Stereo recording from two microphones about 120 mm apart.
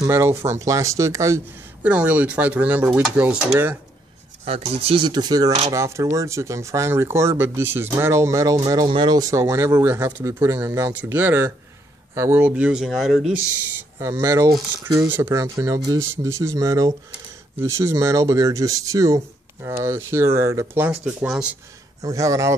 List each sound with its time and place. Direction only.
0.0 s speech: 25° right (ahead or behind)
1.8 s speech: 10° right (ahead or behind)
4.7 s speech: 50° right (ahead or behind); by 8.8 s 30° right (ahead or behind)
8.8 s speech: 40° right (ahead or behind); by 13.2 s centre (ahead or behind)
13.9 s speech: 25° right (ahead or behind); by 21.5 s 10° right (ahead or behind)
22.0 s speech: 30° right (ahead or behind)